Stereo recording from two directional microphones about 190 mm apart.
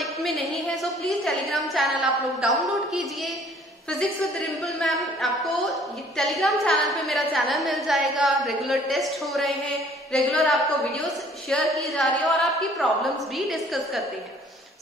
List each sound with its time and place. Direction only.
0.0 s a woman's voice: centre (ahead or behind)
4.6 s a woman's voice: centre (ahead or behind)